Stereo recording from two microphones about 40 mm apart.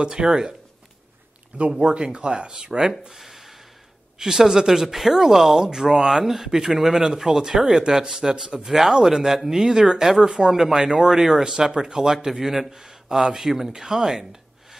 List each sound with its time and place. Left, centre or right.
0.0 s speech: right
1.7 s speech: right
3.1 s a sound: centre
4.2 s speech: centre